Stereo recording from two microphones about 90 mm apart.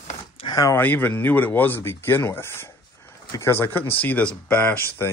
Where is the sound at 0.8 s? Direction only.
20° left (ahead or behind).